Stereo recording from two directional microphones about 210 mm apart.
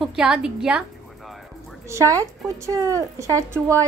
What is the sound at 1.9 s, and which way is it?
Speech, 15° right (ahead or behind).